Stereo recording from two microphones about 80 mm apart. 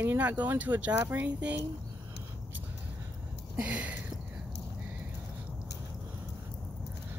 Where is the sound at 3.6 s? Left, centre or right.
Centre.